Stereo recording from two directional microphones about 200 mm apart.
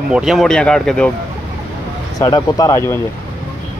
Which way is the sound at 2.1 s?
20° left (ahead or behind).